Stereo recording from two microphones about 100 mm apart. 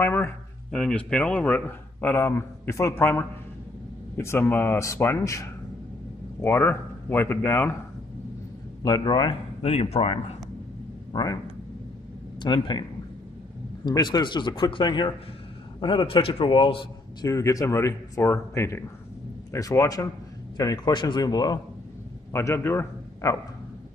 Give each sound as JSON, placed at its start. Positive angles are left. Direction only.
{"t": 0.0, "sound": "speech", "side_deg": 20}
{"t": 0.7, "sound": "a man's voice", "side_deg": 10}
{"t": 8.8, "sound": "speech", "side_deg": 40}
{"t": 9.6, "sound": "speech", "side_deg": 85}
{"t": 11.1, "sound": "speech", "side_deg": 45}
{"t": 12.4, "sound": "speech", "side_deg": 50}
{"t": 13.8, "sound": "speech", "side_deg": 45}
{"t": 16.1, "sound": "a man's voice", "side_deg": 70}
{"t": 17.2, "sound": "speech", "side_deg": 35}
{"t": 20.5, "sound": "speech", "side_deg": 45}
{"t": 22.3, "sound": "a man's voice", "side_deg": 25}